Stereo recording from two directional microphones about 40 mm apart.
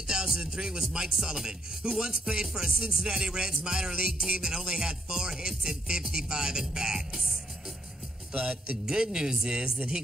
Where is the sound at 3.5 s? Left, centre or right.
Centre.